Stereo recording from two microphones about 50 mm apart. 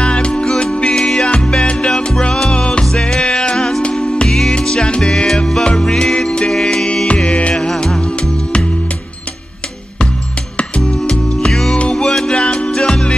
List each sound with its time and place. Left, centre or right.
0.0 s music: left
5.1 s music: centre
7.2 s music: left
7.5 s music: centre
10.9 s music: centre